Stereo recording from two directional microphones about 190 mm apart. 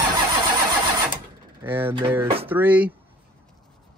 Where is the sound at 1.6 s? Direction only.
10° right (ahead or behind).